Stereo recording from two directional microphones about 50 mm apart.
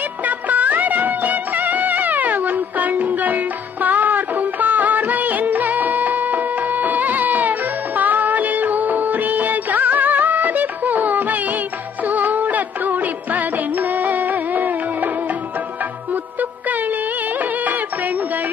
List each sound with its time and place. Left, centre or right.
0.2 s music: right
16.1 s music: right